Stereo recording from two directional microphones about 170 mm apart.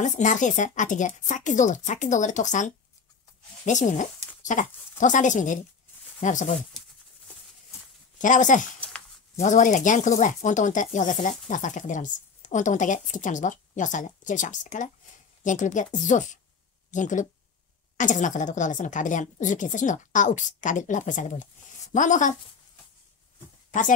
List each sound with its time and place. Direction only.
0.0 s speech: 45° left (ahead or behind)
8.2 s speech: 45° left (ahead or behind)